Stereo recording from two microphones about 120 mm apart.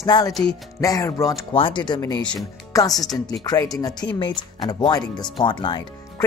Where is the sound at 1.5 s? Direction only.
45° left (ahead or behind).